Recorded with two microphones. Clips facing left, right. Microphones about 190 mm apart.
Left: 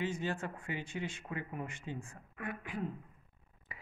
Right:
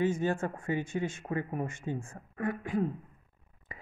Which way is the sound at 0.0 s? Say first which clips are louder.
Right 8 dB; 50° right (ahead or behind).